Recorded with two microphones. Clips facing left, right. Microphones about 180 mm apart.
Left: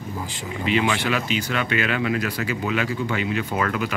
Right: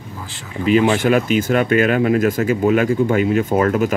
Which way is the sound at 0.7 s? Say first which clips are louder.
Right 8 dB; 45° right (ahead or behind).